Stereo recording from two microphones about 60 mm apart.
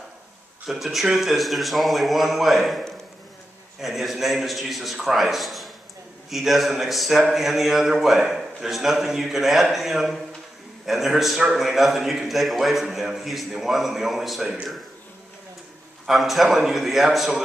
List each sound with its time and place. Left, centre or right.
0.7 s a man's voice: centre
16.1 s a man's voice: centre